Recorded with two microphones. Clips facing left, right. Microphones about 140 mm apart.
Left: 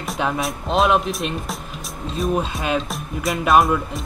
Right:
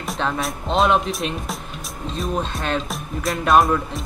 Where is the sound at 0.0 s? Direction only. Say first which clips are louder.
Left 1 dB; centre (ahead or behind).